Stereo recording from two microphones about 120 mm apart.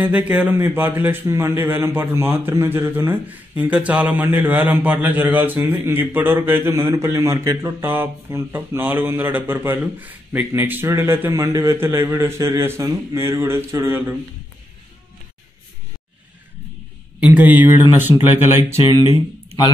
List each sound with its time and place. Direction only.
0.0 s a man's voice: 15° right (ahead or behind)
17.2 s a man's voice: 15° right (ahead or behind)
18.8 s speech: 40° left (ahead or behind)